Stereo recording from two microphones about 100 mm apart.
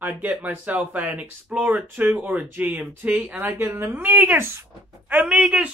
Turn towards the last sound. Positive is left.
turn(degrees=-10)  # may be behind; listen again after turning